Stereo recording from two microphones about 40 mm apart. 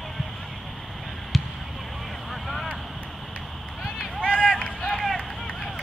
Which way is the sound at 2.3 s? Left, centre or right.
Centre.